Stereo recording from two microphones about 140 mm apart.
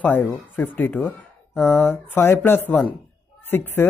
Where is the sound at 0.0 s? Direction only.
15° left (ahead or behind).